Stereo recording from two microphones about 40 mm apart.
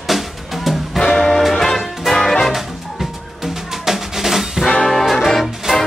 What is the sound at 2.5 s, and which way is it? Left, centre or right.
Music, centre.